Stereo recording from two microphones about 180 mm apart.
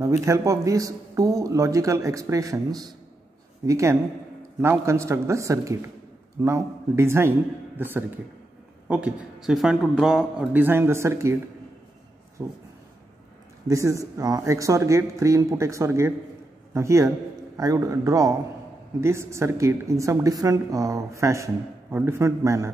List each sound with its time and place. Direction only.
0.0 s speech: 15° right (ahead or behind)
12.4 s speech: 15° right (ahead or behind)
13.7 s a man's voice: 20° right (ahead or behind)